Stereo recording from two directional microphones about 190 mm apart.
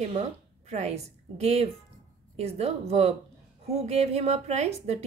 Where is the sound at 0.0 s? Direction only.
35° right (ahead or behind).